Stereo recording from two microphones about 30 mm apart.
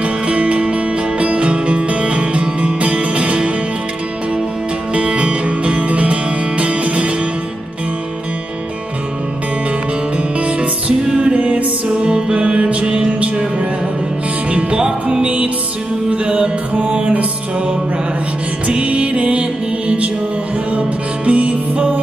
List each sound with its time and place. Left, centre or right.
0.0 s music: right
0.7 s music: right
4.9 s music: right
10.1 s music: right
14.8 s music: right
15.2 s music: right
18.7 s music: right
21.3 s music: right